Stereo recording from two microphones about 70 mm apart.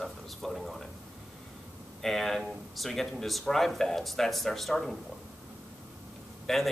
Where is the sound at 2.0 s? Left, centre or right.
Centre.